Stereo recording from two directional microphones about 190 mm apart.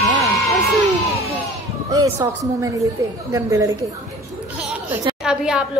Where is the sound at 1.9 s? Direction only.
20° right (ahead or behind).